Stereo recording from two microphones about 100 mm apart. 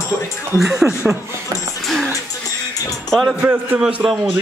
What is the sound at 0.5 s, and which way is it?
Speech, 5° right (ahead or behind).